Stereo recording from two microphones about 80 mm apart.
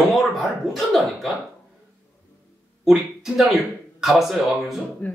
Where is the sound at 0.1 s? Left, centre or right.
Centre.